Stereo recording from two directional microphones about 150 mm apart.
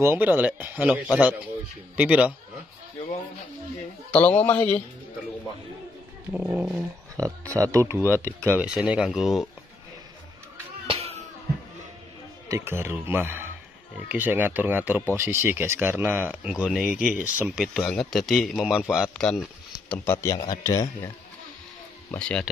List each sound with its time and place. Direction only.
0.0 s speech: 15° right (ahead or behind)
4.1 s a man's voice: 10° left (ahead or behind)
6.3 s speech: 10° right (ahead or behind)
7.2 s speech: 20° right (ahead or behind)
8.5 s speech: 5° right (ahead or behind)
10.9 s music: 45° right (ahead or behind)
12.4 s speech: 15° right (ahead or behind)
17.7 s speech: 5° left (ahead or behind)
19.9 s speech: 15° left (ahead or behind)
22.1 s a man's voice: 10° left (ahead or behind)